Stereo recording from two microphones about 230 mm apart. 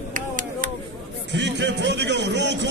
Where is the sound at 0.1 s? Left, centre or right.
Right.